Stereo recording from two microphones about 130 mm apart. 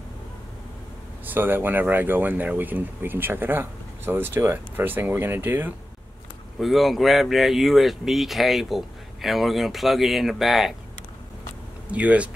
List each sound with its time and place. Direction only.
1.3 s speech: 15° right (ahead or behind)
6.6 s speech: centre (ahead or behind)
11.9 s speech: 10° right (ahead or behind)